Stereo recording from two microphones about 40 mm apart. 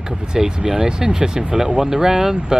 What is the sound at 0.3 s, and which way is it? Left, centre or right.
Speech, centre.